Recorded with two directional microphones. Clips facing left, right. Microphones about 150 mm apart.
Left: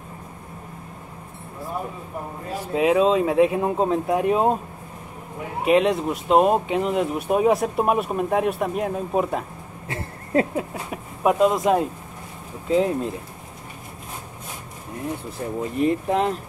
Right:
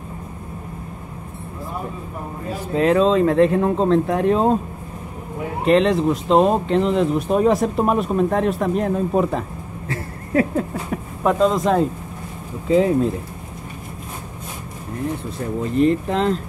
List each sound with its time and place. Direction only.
2.7 s speech: 5° left (ahead or behind)
5.7 s speech: 5° left (ahead or behind)
9.8 s a sound: 20° left (ahead or behind)
10.5 s speech: 10° left (ahead or behind)
15.7 s speech: 10° left (ahead or behind)